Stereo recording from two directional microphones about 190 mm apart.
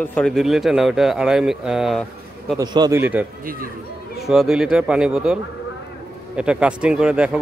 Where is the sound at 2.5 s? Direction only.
20° right (ahead or behind).